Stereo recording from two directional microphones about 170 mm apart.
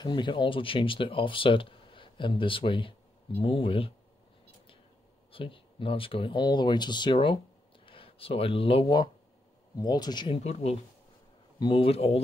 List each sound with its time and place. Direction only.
0.0 s speech: 25° left (ahead or behind)
5.3 s speech: 30° left (ahead or behind)